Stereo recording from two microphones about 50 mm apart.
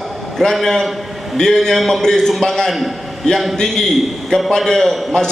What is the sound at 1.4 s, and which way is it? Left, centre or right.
A man's voice, centre.